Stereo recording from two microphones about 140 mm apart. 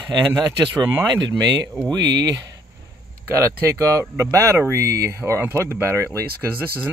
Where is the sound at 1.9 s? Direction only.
30° right (ahead or behind).